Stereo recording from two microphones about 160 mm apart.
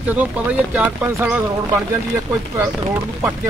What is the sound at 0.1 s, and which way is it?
Speech, 10° right (ahead or behind).